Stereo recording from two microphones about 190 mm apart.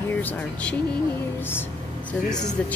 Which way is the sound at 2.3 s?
20° left (ahead or behind).